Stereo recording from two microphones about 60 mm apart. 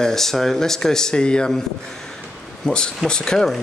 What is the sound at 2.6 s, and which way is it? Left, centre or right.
Speech, centre.